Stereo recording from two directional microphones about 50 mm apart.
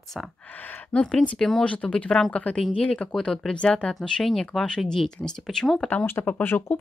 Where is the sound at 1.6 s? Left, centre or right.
Left.